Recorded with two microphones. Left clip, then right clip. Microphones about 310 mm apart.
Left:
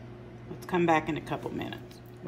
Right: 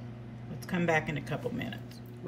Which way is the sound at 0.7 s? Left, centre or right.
Centre.